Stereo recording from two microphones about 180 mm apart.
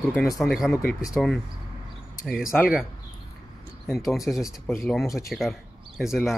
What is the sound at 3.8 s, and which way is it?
Speech, centre (ahead or behind).